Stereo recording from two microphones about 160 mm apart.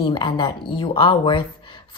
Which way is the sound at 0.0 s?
30° left (ahead or behind).